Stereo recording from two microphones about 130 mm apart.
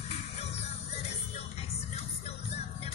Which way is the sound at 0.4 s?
55° left (ahead or behind).